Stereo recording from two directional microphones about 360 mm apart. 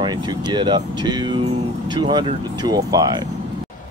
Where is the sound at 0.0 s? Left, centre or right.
Centre.